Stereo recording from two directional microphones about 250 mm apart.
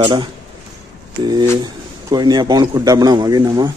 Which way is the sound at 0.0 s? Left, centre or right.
Centre.